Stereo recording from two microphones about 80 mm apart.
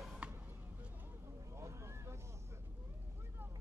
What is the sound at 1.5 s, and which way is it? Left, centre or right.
Vehicle, right.